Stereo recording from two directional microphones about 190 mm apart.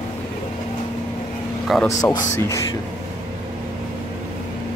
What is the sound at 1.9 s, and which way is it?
Speech, 15° left (ahead or behind).